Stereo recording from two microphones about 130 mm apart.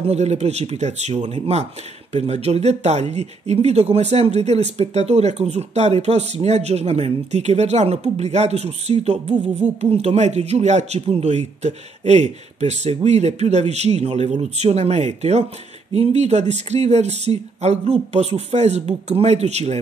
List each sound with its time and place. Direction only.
0.0 s speech: 55° right (ahead or behind)